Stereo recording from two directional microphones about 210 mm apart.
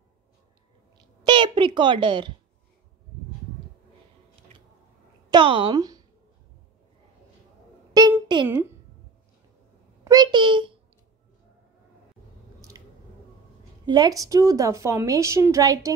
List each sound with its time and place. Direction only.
1.2 s a woman's voice: 20° right (ahead or behind)
5.3 s a woman's voice: 25° right (ahead or behind)
8.0 s a sound: 20° right (ahead or behind)
10.0 s a child's voice: 20° right (ahead or behind)
12.7 s squish: 15° right (ahead or behind)
13.8 s a woman's voice: 20° right (ahead or behind)